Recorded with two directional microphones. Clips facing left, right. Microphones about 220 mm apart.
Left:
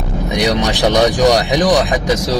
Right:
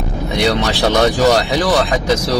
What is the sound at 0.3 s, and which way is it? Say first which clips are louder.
Speech: left 1 dB; 15° left (ahead or behind).